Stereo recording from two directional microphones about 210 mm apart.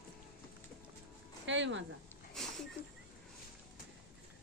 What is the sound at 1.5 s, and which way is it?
Speech, 60° right (ahead or behind).